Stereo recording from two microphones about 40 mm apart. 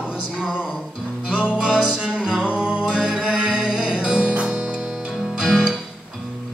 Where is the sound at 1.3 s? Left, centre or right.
Right.